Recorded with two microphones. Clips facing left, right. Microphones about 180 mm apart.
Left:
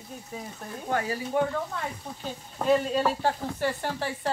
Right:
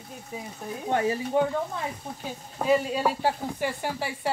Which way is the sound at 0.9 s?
25° right (ahead or behind).